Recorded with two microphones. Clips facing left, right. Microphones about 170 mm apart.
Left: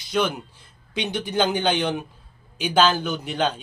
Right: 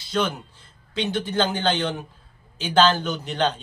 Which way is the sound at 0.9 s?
15° left (ahead or behind).